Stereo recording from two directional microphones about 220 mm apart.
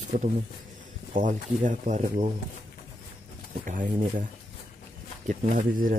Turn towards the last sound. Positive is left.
turn(degrees=-40)  # may be behind; listen again after turning